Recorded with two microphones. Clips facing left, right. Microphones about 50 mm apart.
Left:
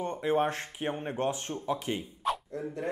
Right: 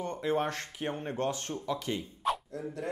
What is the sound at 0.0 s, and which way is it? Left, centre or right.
Speech, left.